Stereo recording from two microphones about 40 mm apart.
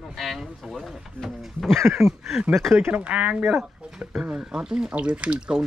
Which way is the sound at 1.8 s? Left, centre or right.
Right.